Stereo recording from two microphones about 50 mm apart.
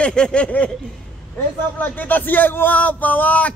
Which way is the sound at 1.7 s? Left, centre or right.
Left.